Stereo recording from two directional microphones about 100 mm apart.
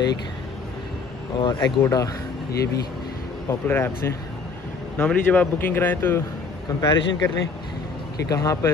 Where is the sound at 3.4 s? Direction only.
20° left (ahead or behind).